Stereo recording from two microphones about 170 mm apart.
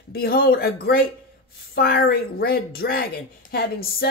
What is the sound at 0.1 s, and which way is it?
Speech, 60° left (ahead or behind).